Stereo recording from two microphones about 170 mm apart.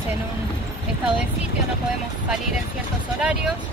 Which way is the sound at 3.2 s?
5° right (ahead or behind).